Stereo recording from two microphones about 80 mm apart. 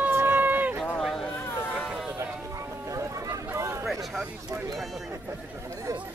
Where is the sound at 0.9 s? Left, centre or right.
Centre.